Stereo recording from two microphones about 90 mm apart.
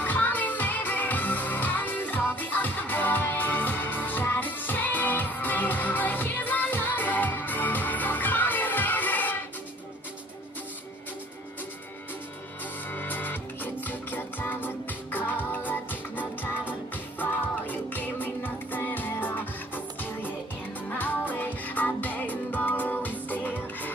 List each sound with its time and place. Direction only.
0.0 s music: 20° left (ahead or behind)
12.9 s music: 20° left (ahead or behind)